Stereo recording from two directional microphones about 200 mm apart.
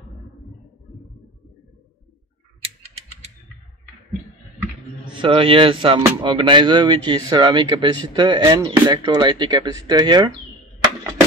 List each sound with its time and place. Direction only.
5.1 s speech: 25° right (ahead or behind)